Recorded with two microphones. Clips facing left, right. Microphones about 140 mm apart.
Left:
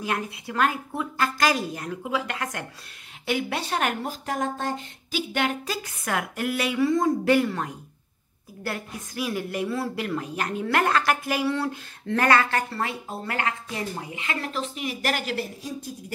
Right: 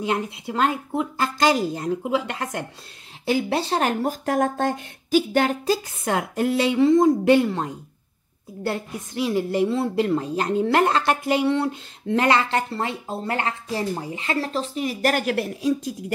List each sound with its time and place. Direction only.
0.0 s a woman's voice: 25° right (ahead or behind)
4.1 s speech: 55° right (ahead or behind)
5.3 s a woman's voice: 40° right (ahead or behind); by 15.9 s 70° right (ahead or behind)